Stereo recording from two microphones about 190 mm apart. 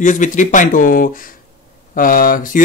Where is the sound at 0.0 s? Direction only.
40° left (ahead or behind).